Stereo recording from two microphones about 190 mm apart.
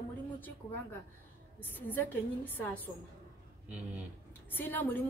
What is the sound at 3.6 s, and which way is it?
Speech, 5° right (ahead or behind).